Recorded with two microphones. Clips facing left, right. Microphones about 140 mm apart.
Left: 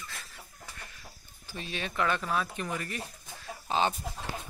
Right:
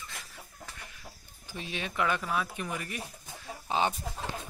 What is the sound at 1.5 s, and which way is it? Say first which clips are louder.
Speech: even; 15° right (ahead or behind).